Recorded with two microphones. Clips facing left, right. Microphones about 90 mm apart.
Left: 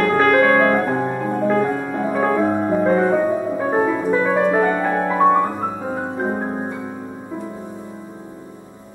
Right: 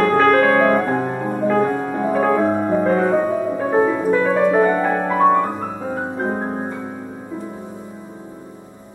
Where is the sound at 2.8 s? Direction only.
10° left (ahead or behind).